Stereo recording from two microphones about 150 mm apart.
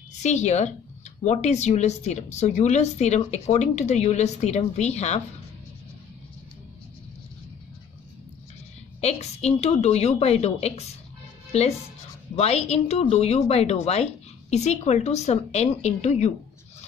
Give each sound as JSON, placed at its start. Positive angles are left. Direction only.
{"t": 0.1, "sound": "a woman's voice", "side_deg": 50}
{"t": 9.0, "sound": "a woman's voice", "side_deg": 45}